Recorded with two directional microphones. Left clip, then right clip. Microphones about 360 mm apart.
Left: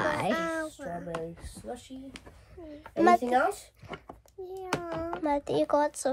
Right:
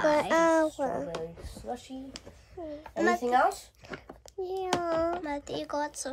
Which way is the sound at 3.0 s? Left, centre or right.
Centre.